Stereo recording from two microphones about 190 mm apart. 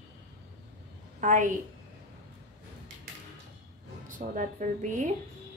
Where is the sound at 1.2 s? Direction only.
40° right (ahead or behind).